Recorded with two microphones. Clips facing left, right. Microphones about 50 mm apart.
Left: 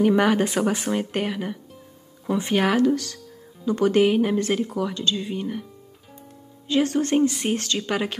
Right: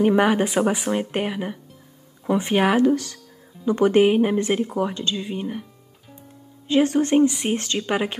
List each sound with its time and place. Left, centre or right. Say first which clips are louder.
0.0 s speech: right 1 dB; centre
5.1 s speech: even; centre
6.7 s speech: right 3 dB; right
7.2 s speech: right 3 dB; centre
7.5 s speech: right 2 dB; right